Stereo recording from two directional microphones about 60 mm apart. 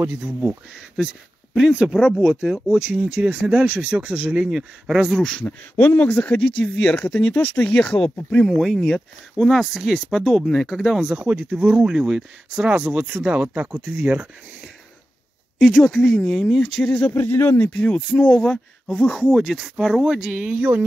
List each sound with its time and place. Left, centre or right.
0.2 s speech: right
0.9 s speech: centre
5.1 s speech: centre
5.8 s speech: left
7.7 s speech: centre
8.5 s speech: centre
11.0 s speech: centre
15.6 s speech: centre
16.8 s speech: left
17.1 s speech: left
17.6 s speech: left
19.2 s speech: centre
20.2 s speech: centre
20.5 s a sound: right